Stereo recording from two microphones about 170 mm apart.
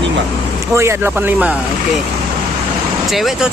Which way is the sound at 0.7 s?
15° right (ahead or behind).